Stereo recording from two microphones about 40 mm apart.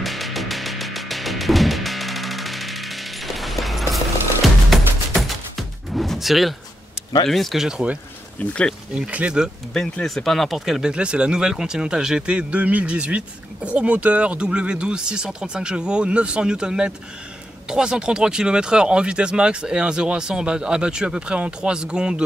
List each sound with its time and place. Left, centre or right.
0.0 s music: centre
7.2 s speech: centre
7.5 s speech: centre
8.4 s speech: left
8.9 s speech: right
10.0 s speech: centre
10.8 s speech: right
12.4 s speech: right